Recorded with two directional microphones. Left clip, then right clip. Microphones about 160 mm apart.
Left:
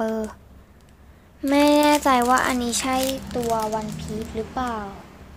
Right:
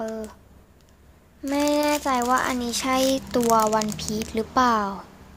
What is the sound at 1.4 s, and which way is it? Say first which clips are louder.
Speech: left 5 dB; 5° left (ahead or behind).